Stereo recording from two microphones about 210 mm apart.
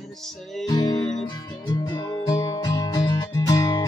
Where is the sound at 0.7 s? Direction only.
20° left (ahead or behind).